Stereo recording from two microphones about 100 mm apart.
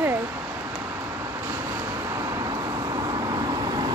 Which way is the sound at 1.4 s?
30° right (ahead or behind).